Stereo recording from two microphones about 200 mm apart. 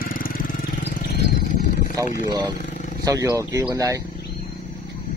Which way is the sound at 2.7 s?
40° left (ahead or behind).